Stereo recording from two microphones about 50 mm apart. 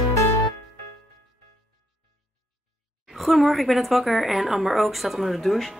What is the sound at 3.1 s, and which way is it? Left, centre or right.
A woman's voice, centre.